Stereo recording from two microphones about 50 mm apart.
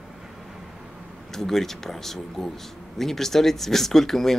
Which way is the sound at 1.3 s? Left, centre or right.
Centre.